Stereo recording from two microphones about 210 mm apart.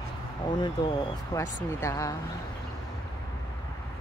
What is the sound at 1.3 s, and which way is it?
Speech, 10° left (ahead or behind).